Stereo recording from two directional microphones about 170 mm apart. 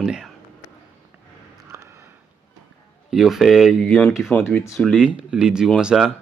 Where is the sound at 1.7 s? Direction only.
15° right (ahead or behind).